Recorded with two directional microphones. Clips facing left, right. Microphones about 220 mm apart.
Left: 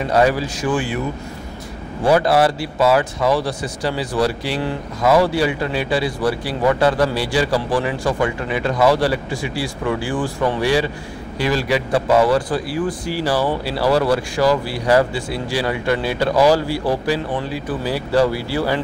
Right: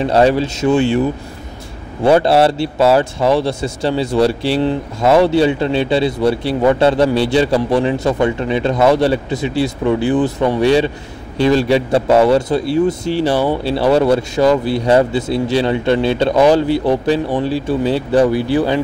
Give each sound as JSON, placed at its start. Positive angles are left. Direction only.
{"t": 0.1, "sound": "speech", "side_deg": -25}
{"t": 2.0, "sound": "speech", "side_deg": -25}